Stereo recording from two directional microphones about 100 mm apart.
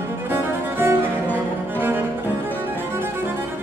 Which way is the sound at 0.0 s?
20° right (ahead or behind).